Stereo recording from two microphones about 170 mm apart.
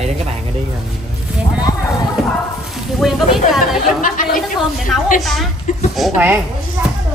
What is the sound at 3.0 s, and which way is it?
Speech, centre (ahead or behind).